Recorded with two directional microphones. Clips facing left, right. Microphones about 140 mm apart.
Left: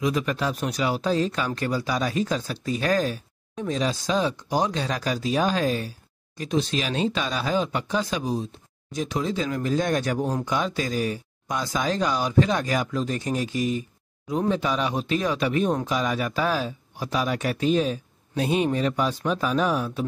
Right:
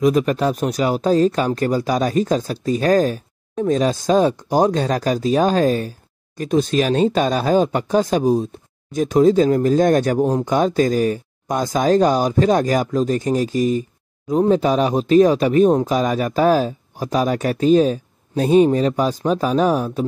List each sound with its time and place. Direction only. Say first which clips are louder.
0.0 s speech: right 8 dB; 45° right (ahead or behind)